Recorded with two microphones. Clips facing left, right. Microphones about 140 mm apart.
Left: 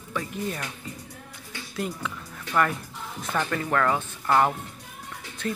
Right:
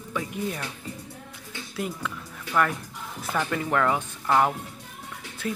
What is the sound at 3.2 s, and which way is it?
Speech, 10° right (ahead or behind).